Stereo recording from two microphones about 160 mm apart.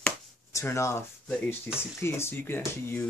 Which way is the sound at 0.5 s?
20° left (ahead or behind).